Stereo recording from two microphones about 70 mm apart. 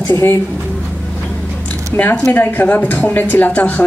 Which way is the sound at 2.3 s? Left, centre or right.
Left.